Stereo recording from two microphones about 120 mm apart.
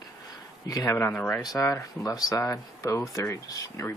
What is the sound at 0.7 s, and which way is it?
Speech, 25° left (ahead or behind).